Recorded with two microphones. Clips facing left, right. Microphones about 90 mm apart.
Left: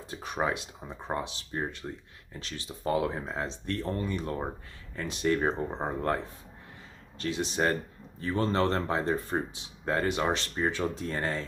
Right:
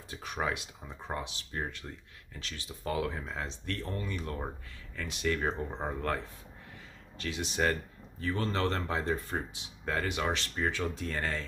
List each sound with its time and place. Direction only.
0.1 s speech: 30° left (ahead or behind)